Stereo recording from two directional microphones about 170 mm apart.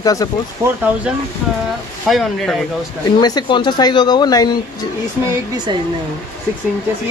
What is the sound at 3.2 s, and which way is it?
Speech, 25° left (ahead or behind).